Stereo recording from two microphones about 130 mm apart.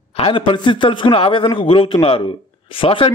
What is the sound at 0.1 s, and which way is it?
A man's voice, 45° left (ahead or behind).